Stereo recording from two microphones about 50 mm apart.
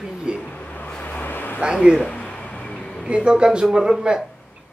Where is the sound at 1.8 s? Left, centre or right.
Centre.